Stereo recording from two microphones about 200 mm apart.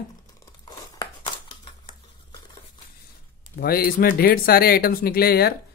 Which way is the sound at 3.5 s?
50° left (ahead or behind).